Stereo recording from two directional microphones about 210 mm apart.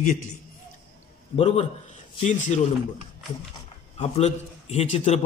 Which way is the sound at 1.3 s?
30° left (ahead or behind).